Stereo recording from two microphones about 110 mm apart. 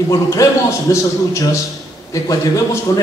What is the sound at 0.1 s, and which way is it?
A man's voice, 30° left (ahead or behind).